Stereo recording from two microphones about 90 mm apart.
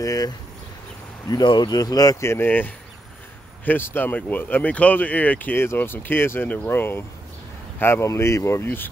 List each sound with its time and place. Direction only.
0.0 s speech: 40° left (ahead or behind)
1.3 s speech: 55° left (ahead or behind)
2.2 s speech: 25° left (ahead or behind)